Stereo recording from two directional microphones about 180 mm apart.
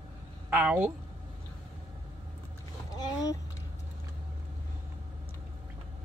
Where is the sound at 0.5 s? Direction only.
10° right (ahead or behind).